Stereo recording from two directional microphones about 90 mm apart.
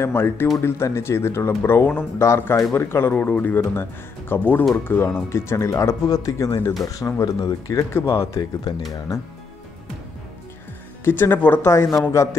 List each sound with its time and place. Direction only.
0.0 s speech: 25° left (ahead or behind); by 7.8 s 40° left (ahead or behind)
7.9 s speech: 30° left (ahead or behind)
11.1 s speech: 25° left (ahead or behind)
11.7 s speech: 35° left (ahead or behind)